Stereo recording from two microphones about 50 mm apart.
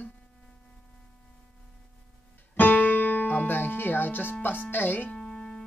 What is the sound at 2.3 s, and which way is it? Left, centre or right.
Music, left.